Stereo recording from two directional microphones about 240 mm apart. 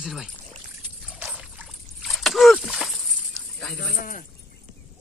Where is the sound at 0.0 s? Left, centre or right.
Centre.